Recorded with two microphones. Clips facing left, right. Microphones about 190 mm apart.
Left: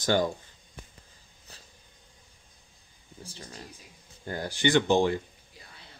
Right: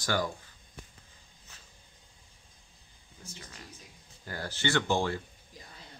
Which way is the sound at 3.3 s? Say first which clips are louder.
Left 3 dB; 35° left (ahead or behind).